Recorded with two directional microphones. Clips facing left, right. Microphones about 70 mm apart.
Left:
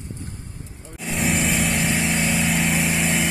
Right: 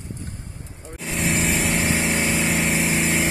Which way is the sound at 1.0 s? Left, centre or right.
Centre.